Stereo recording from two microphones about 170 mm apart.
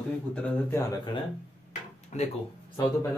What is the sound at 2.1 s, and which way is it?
Speech, 45° left (ahead or behind).